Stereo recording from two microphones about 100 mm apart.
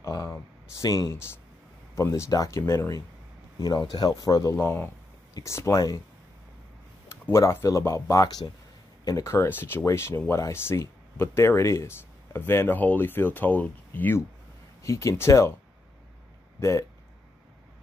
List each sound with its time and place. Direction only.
0.0 s a sound: 35° left (ahead or behind)
0.3 s speech: 30° left (ahead or behind)
3.5 s speech: 40° left (ahead or behind)
4.6 s speech: 20° left (ahead or behind)
7.1 s speech: 30° left (ahead or behind)
14.8 s speech: 30° left (ahead or behind)
16.5 s speech: 30° left (ahead or behind)